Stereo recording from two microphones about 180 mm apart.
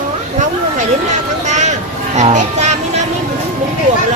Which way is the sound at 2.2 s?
40° right (ahead or behind).